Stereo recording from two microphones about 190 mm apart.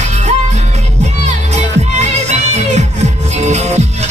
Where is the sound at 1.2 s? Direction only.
35° right (ahead or behind).